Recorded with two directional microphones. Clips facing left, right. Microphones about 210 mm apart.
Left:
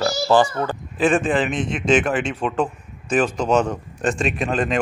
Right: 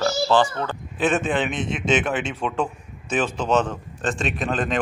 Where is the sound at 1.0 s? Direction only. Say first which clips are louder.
Left 3 dB; 5° right (ahead or behind).